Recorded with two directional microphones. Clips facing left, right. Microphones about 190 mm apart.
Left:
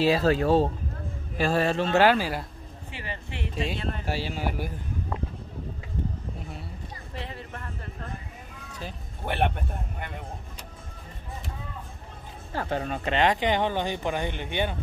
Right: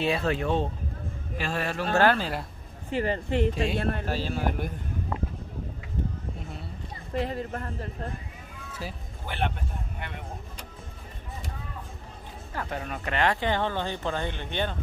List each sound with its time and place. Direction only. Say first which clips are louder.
0.0 s a man's voice: left 5 dB; 30° left (ahead or behind)
2.0 s speech: left 2 dB; 5° left (ahead or behind)
2.9 s speech: right 12 dB; 45° right (ahead or behind)
4.0 s speech: right 1 dB; 10° left (ahead or behind)
7.2 s a woman's voice: right 9 dB; 40° right (ahead or behind)
9.2 s a man's voice: left 4 dB; 60° left (ahead or behind)
12.5 s speech: left 5 dB; 30° left (ahead or behind); by 14.8 s 10° left (ahead or behind)